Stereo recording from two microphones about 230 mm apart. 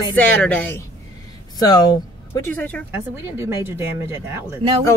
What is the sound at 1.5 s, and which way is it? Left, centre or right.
Speech, centre.